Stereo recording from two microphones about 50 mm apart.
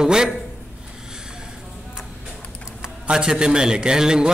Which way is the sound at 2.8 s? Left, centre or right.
Centre.